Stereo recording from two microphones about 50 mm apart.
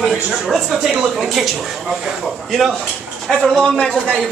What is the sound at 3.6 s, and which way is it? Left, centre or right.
Speech, left.